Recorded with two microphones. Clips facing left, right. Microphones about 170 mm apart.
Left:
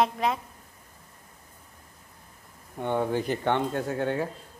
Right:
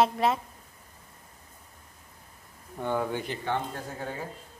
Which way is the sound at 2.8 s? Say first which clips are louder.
Left 3 dB; 25° left (ahead or behind).